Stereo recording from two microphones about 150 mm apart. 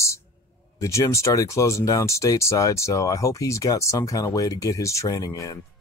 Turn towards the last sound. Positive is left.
turn(degrees=25)  # may be behind; listen again after turning